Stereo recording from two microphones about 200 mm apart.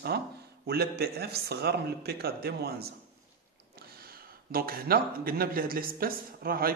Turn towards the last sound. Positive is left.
turn(degrees=-45)  # may be behind; listen again after turning